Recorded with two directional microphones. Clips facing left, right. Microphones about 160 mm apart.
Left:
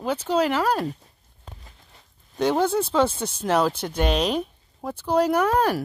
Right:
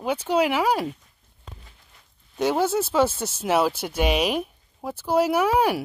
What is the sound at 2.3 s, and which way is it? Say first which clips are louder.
Speech: left 1 dB; 5° right (ahead or behind).